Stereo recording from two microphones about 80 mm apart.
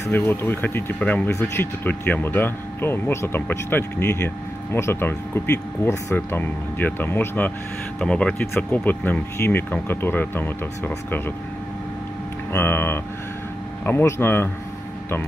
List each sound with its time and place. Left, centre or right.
0.1 s speech: left
8.0 s speech: centre
8.7 s speech: left
12.5 s speech: left